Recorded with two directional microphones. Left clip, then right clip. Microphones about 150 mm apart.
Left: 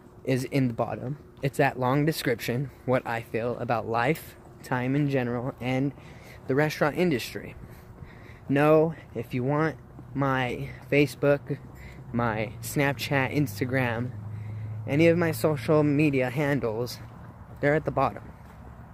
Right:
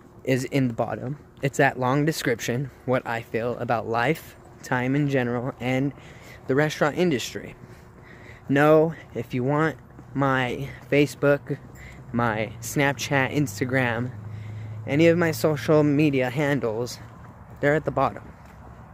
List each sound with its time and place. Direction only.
0.2 s speech: 20° right (ahead or behind)
2.9 s speech: 5° right (ahead or behind)
15.5 s speech: 30° right (ahead or behind); by 18.2 s 10° right (ahead or behind)